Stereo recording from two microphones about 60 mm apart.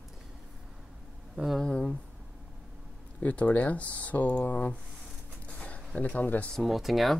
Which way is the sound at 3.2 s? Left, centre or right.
Left.